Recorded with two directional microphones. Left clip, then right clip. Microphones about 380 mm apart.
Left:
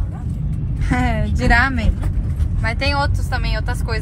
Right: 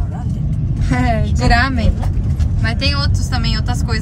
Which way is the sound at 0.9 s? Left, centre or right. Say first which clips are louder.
Right 3 dB; centre.